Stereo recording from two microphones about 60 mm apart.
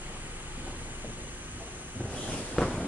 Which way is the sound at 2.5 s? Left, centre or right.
Centre.